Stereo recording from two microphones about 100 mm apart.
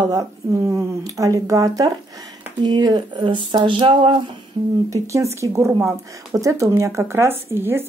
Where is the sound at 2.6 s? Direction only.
45° right (ahead or behind); by 4.2 s 60° right (ahead or behind).